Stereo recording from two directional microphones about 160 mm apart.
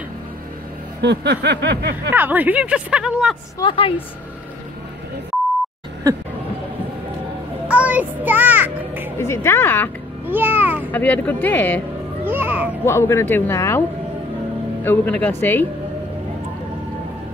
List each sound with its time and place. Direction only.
1.0 s snicker: 90° right
2.1 s speech: 10° right (ahead or behind)
3.5 s a woman's voice: 30° left (ahead or behind)
7.6 s music: 10° right (ahead or behind)
9.2 s speech: 15° left (ahead or behind)
10.2 s a child's voice: 10° right (ahead or behind)
10.9 s speech: 10° left (ahead or behind)
12.3 s children playing: 15° right (ahead or behind)
12.8 s speech: 15° left (ahead or behind)